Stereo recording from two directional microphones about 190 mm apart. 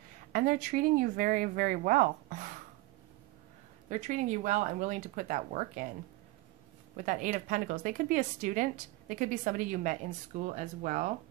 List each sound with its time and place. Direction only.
0.3 s a woman's voice: 45° right (ahead or behind)
3.9 s speech: 40° right (ahead or behind)
7.0 s a woman's voice: 45° right (ahead or behind)